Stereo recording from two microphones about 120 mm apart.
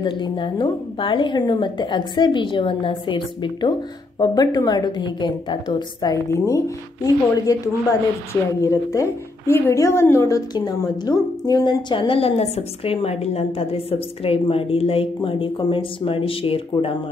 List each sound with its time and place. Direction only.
0.0 s a woman's voice: 40° left (ahead or behind)
6.3 s a woman's voice: 25° left (ahead or behind); by 16.9 s 50° left (ahead or behind)